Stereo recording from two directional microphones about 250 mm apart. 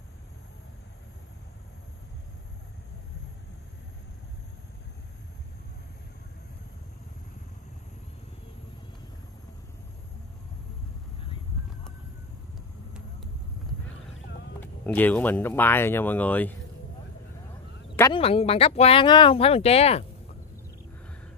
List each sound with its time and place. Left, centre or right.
15.0 s speech: centre
17.9 s speech: centre